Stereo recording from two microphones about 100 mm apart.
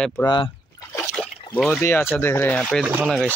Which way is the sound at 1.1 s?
10° left (ahead or behind).